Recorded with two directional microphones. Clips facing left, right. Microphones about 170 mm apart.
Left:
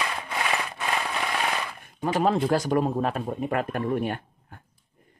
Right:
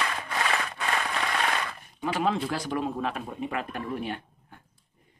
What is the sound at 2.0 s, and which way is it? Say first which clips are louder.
Speech: left 4 dB; 40° left (ahead or behind).